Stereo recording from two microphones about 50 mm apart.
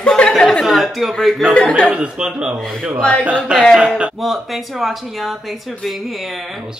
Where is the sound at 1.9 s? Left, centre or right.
Centre.